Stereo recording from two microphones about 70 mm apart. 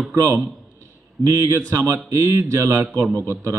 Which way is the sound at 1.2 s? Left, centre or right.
Right.